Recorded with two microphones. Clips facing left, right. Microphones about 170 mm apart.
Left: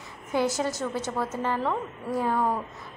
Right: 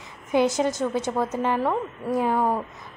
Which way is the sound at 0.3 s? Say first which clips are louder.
Right 5 dB; 20° right (ahead or behind).